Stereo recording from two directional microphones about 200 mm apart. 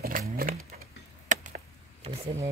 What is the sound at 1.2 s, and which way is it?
Chop, 40° right (ahead or behind).